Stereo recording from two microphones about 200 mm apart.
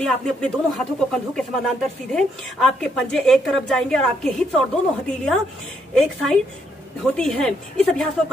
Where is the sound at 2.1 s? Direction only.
5° left (ahead or behind).